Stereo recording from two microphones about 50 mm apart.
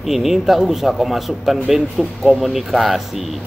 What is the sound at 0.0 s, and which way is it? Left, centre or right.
Speech, centre.